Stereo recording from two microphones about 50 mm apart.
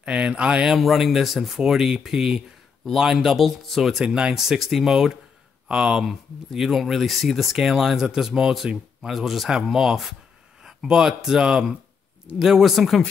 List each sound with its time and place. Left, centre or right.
0.0 s speech: right
0.7 s speech: centre
4.0 s speech: centre